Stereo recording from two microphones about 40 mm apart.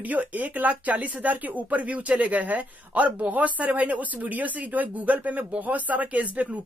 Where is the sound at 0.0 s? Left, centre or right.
Right.